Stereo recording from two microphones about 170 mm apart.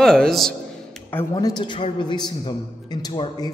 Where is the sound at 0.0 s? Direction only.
5° left (ahead or behind).